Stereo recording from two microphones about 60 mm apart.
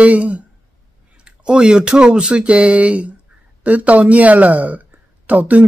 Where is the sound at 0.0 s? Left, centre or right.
Right.